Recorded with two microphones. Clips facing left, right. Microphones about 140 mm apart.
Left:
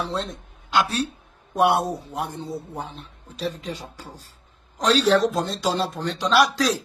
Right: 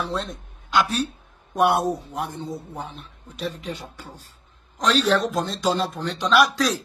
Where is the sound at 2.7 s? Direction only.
30° left (ahead or behind).